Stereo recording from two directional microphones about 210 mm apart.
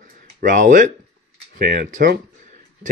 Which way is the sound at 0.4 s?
40° right (ahead or behind).